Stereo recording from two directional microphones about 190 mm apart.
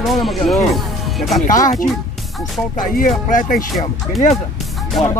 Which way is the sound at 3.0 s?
45° left (ahead or behind).